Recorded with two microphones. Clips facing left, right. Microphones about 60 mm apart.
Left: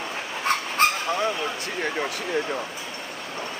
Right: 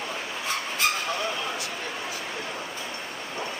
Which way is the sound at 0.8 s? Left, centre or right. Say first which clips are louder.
Left 5 dB; left.